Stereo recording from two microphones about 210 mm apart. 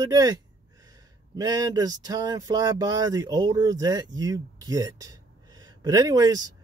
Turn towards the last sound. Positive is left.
turn(degrees=-20)  # may be behind; listen again after turning